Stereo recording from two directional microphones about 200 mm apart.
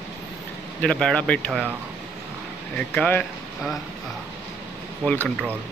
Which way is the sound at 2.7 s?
5° left (ahead or behind).